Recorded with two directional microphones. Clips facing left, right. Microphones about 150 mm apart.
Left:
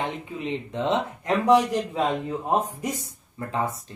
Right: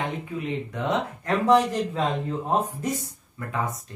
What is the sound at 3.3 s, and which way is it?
Speech, 30° left (ahead or behind).